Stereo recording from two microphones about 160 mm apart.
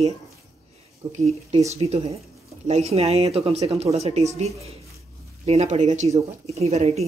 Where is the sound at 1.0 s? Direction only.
40° right (ahead or behind).